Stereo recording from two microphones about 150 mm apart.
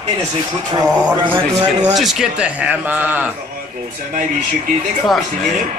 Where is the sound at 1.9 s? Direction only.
Centre (ahead or behind).